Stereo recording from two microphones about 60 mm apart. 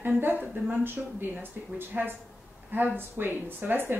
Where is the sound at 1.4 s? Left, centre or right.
Right.